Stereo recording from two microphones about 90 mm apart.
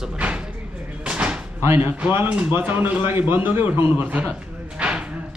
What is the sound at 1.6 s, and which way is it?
Speech, 30° right (ahead or behind).